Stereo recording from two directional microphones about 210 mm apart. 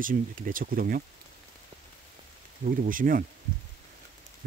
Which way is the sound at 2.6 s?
40° right (ahead or behind).